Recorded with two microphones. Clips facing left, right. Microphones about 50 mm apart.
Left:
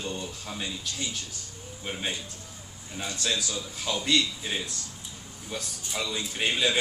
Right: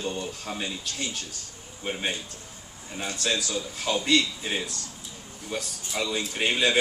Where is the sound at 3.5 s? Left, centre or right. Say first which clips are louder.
Right 4 dB; right.